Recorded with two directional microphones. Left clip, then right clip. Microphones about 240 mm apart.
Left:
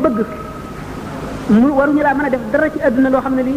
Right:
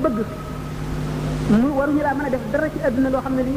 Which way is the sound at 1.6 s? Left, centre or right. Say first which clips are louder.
Left 8 dB; left.